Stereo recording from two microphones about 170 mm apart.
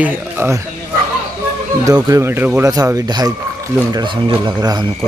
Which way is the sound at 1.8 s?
20° right (ahead or behind).